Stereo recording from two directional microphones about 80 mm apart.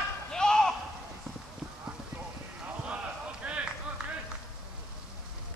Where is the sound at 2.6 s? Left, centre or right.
Centre.